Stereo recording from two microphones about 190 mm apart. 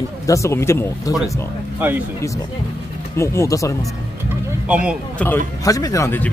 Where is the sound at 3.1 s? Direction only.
15° left (ahead or behind).